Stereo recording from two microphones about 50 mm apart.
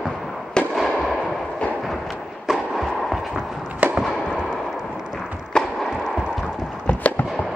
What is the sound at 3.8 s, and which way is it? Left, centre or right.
Fireworks, right.